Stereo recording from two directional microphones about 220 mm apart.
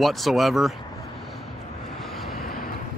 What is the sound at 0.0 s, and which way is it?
Speech, centre (ahead or behind).